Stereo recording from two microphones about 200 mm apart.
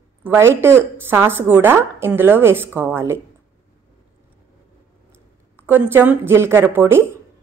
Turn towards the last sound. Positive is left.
turn(degrees=-10)  # may be behind; listen again after turning